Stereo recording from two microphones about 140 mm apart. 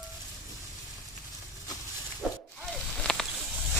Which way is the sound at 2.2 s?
5° right (ahead or behind).